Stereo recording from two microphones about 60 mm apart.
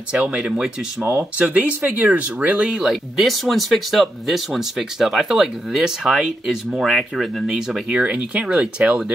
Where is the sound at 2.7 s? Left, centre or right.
Centre.